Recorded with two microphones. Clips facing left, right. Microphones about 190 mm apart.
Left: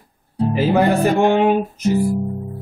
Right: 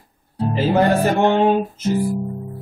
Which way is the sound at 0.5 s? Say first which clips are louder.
Even; 10° left (ahead or behind).